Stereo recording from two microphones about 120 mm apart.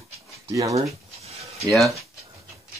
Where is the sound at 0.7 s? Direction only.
60° right (ahead or behind).